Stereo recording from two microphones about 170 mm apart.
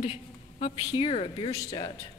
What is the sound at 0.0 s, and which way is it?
A woman's voice, 35° left (ahead or behind).